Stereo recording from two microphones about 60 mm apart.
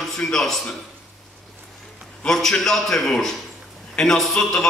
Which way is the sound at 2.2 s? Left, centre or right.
Centre.